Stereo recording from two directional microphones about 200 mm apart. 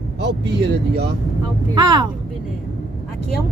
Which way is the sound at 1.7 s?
20° right (ahead or behind).